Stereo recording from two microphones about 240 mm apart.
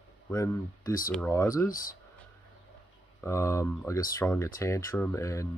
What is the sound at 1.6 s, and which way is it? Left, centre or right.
Speech, left.